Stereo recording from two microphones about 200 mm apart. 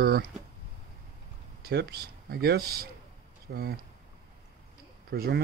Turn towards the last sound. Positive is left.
turn(degrees=-50)  # may be behind; listen again after turning